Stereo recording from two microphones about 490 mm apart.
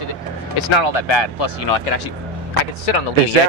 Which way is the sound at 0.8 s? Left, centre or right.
Left.